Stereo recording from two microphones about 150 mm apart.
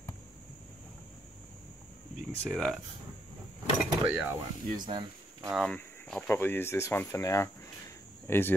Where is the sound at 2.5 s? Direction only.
Centre (ahead or behind).